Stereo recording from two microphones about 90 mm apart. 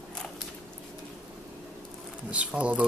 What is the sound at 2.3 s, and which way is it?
Speech, 15° right (ahead or behind).